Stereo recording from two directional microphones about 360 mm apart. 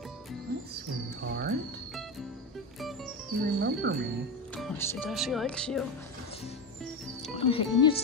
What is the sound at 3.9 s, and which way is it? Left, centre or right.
Speech, right.